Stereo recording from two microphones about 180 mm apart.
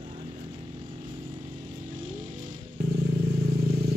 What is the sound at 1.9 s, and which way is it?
Vehicle, 50° right (ahead or behind).